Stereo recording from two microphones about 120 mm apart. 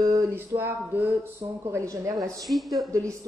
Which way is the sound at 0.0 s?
25° right (ahead or behind).